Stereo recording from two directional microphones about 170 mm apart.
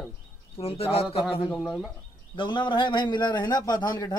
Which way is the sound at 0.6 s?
35° left (ahead or behind).